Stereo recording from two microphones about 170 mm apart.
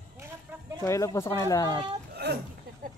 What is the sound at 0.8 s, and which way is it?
Speech, 15° left (ahead or behind).